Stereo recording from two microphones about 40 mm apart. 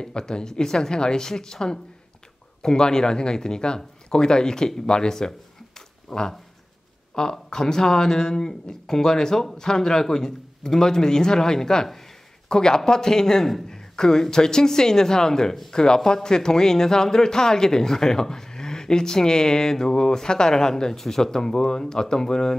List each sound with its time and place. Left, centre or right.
0.0 s speech: centre
5.8 s a sound: centre
7.2 s speech: centre